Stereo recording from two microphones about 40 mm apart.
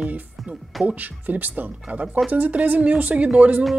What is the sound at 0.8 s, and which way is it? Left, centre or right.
Speech, right.